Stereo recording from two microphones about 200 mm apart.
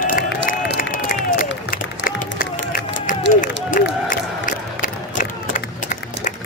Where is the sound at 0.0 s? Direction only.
45° left (ahead or behind).